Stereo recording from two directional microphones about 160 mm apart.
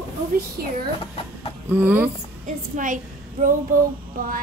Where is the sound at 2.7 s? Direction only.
55° right (ahead or behind).